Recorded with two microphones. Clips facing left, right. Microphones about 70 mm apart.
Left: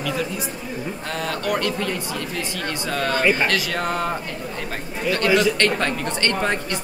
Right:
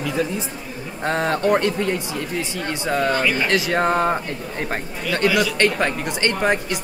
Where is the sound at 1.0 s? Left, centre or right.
Right.